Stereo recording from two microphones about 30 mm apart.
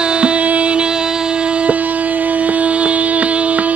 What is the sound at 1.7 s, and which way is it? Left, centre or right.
Music, right.